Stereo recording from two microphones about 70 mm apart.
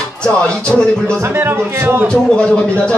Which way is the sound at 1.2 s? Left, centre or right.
Right.